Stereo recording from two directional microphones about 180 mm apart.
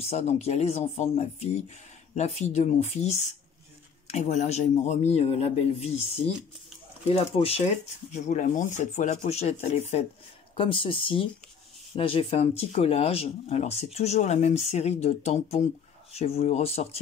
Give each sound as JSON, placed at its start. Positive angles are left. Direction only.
{"t": 0.0, "sound": "speech", "side_deg": 35}
{"t": 7.1, "sound": "speech", "side_deg": 35}